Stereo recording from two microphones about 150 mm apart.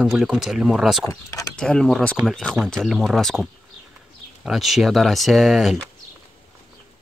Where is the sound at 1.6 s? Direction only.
5° left (ahead or behind).